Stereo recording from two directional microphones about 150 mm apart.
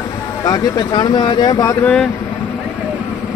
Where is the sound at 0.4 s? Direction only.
25° left (ahead or behind).